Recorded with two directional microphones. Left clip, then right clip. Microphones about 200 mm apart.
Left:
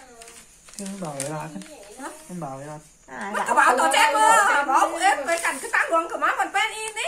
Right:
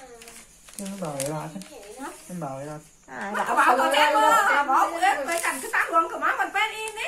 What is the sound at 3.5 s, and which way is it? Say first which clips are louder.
A woman's voice: left 2 dB; 55° left (ahead or behind).